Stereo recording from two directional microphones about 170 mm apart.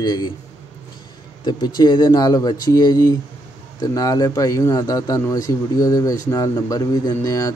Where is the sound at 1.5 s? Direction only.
25° left (ahead or behind).